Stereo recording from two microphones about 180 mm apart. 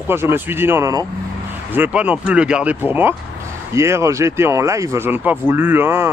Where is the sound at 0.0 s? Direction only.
15° right (ahead or behind).